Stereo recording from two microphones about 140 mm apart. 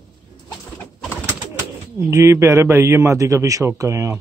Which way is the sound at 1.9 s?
20° right (ahead or behind).